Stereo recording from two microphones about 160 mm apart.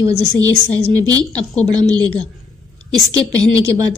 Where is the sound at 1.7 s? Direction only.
25° right (ahead or behind).